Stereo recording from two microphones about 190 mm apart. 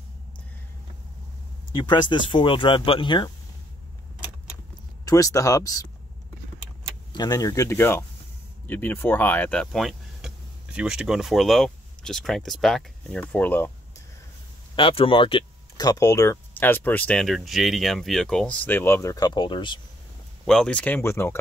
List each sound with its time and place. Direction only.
1.8 s speech: 25° left (ahead or behind)
5.0 s speech: 15° left (ahead or behind)
7.1 s speech: 20° left (ahead or behind)
14.8 s speech: 30° left (ahead or behind)
20.4 s speech: 5° left (ahead or behind)